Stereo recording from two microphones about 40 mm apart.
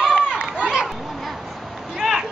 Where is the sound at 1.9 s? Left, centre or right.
Centre.